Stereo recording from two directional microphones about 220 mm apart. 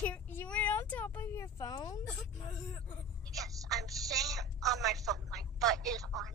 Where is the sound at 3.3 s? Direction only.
Centre (ahead or behind).